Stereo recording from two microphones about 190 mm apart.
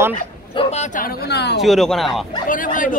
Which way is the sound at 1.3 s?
60° left (ahead or behind).